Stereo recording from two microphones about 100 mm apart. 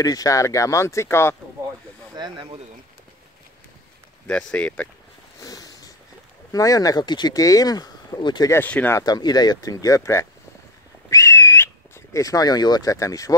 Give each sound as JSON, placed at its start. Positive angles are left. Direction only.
{"t": 0.0, "sound": "speech", "side_deg": 35}
{"t": 2.1, "sound": "speech", "side_deg": -45}
{"t": 4.3, "sound": "speech", "side_deg": 10}
{"t": 5.4, "sound": "a sound", "side_deg": 40}
{"t": 6.5, "sound": "speech", "side_deg": 35}
{"t": 8.6, "sound": "speech", "side_deg": 15}
{"t": 8.9, "sound": "speech", "side_deg": 40}
{"t": 11.1, "sound": "whistling", "side_deg": 30}